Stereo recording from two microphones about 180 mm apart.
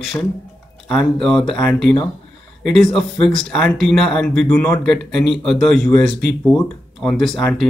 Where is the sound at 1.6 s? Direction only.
15° left (ahead or behind).